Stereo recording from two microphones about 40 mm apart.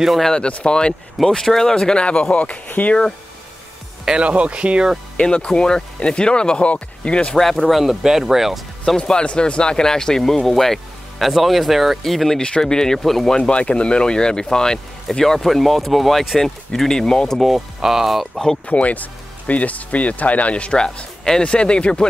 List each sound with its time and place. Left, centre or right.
0.2 s speech: centre
1.3 s speech: centre
2.3 s speech: left
4.2 s speech: right
5.5 s speech: centre
7.3 s speech: centre
8.0 s speech: centre
8.8 s speech: centre
12.4 s speech: centre
13.4 s speech: left
17.4 s speech: centre
18.7 s speech: left